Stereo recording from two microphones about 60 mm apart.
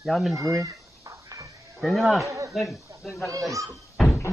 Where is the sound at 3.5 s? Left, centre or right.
Right.